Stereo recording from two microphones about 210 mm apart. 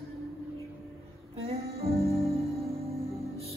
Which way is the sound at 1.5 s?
30° right (ahead or behind).